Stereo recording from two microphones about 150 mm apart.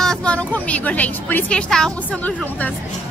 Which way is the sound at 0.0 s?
5° left (ahead or behind).